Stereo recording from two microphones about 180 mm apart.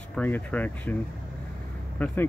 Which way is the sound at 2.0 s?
10° left (ahead or behind).